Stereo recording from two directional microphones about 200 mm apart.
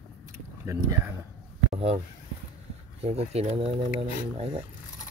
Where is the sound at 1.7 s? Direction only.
35° right (ahead or behind).